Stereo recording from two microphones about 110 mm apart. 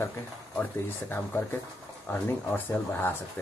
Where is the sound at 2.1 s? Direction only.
20° left (ahead or behind).